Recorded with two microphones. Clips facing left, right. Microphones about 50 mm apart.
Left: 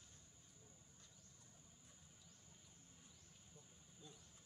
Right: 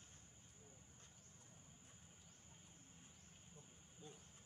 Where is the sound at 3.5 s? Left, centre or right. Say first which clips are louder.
Right 1 dB; right.